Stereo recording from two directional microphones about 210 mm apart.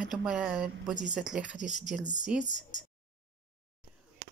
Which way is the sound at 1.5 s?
35° left (ahead or behind).